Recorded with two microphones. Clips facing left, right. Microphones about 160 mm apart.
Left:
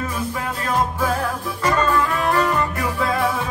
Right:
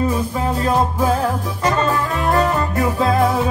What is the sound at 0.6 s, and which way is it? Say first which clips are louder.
Music: right 3 dB; 25° right (ahead or behind).